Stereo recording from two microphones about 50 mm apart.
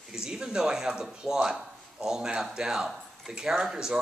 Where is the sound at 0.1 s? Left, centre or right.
Centre.